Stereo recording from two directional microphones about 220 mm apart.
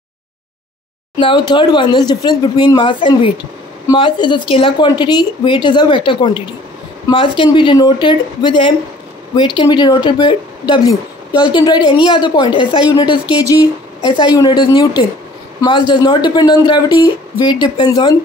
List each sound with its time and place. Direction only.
1.1 s speech: 20° left (ahead or behind)